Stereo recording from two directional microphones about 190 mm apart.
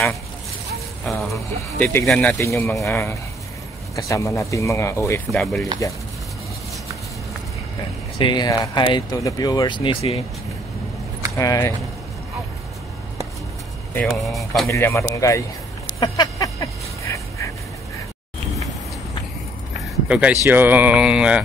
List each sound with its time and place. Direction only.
1.0 s speech: centre (ahead or behind)
5.3 s speech: centre (ahead or behind)
8.2 s speech: 25° left (ahead or behind)
11.3 s speech: 15° left (ahead or behind)
13.9 s speech: centre (ahead or behind)
14.7 s speech: 15° left (ahead or behind)
16.0 s a sound: 20° left (ahead or behind)
20.1 s speech: 5° right (ahead or behind)
20.4 s mantra: 10° right (ahead or behind)